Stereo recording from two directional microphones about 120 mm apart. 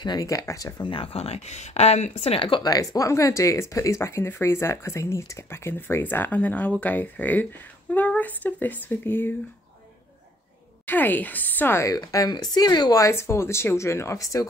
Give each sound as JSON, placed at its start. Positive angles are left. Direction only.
{"t": 0.0, "sound": "speech", "side_deg": 35}
{"t": 0.8, "sound": "speech", "side_deg": 50}
{"t": 2.6, "sound": "speech", "side_deg": 30}
{"t": 10.9, "sound": "speech", "side_deg": 15}